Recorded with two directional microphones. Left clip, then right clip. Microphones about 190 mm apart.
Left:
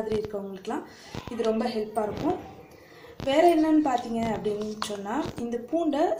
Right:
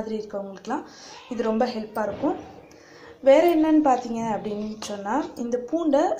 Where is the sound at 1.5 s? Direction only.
20° right (ahead or behind).